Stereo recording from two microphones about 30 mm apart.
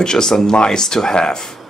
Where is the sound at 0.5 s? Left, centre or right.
Left.